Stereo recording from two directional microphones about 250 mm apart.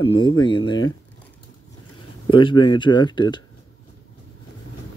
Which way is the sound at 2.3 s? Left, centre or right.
Centre.